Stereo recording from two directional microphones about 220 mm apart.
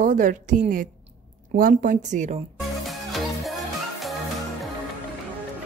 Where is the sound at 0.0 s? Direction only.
35° right (ahead or behind).